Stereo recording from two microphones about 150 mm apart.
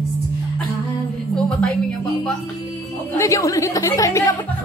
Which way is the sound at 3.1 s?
20° left (ahead or behind).